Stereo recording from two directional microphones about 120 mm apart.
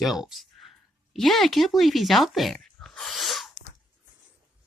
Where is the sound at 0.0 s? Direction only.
Centre (ahead or behind).